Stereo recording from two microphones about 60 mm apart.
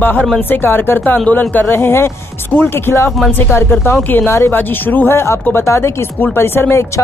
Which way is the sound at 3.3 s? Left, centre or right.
Left.